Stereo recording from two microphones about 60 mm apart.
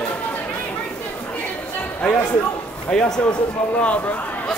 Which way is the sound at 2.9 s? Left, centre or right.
Centre.